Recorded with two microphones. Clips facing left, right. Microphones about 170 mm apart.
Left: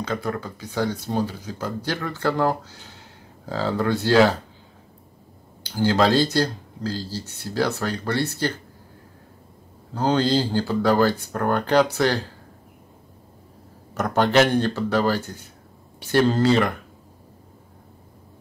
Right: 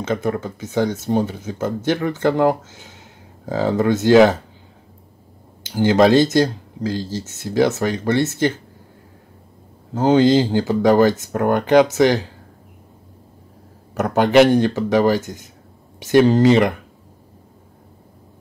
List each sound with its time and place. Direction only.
0.0 s speech: 20° right (ahead or behind)
5.8 s speech: 20° right (ahead or behind)
9.9 s speech: 20° right (ahead or behind)
14.0 s speech: 10° right (ahead or behind)